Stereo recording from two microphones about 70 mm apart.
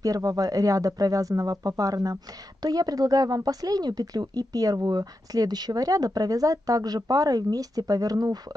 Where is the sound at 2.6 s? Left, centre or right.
Right.